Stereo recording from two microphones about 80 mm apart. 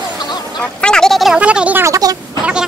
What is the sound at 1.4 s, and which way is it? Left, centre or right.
Speech, centre.